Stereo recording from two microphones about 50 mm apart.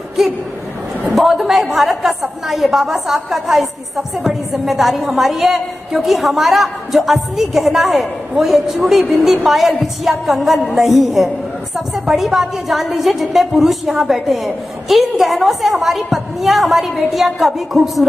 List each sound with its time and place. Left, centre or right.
0.2 s a woman's voice: centre